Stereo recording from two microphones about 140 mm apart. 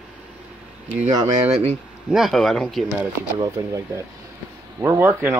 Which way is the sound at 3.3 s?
25° right (ahead or behind).